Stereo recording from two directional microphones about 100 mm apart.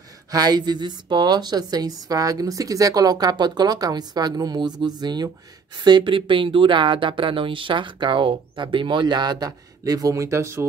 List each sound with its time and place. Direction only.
0.3 s a woman's voice: 40° right (ahead or behind)